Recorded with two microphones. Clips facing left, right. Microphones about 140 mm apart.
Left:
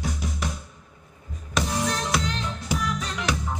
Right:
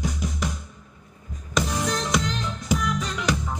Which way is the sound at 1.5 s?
Centre (ahead or behind).